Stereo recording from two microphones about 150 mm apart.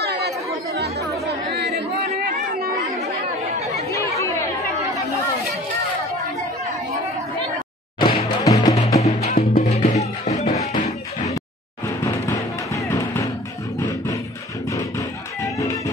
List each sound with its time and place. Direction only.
0.0 s chatter: 90° right
3.5 s chatter: 45° right (ahead or behind)
3.9 s chatter: 20° left (ahead or behind)
8.0 s music: 30° left (ahead or behind)
9.0 s music: 45° left (ahead or behind)
12.0 s music: 20° left (ahead or behind)
15.4 s music: 20° left (ahead or behind)